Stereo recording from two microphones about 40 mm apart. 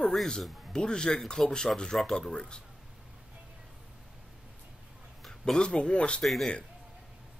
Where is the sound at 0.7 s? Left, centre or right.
Centre.